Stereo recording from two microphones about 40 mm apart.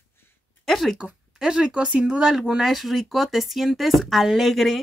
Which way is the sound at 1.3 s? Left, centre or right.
Centre.